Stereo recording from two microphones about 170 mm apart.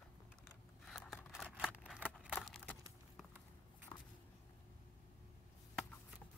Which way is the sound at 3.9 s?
25° left (ahead or behind).